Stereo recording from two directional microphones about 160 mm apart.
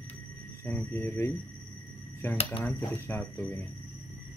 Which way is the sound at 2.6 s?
10° left (ahead or behind).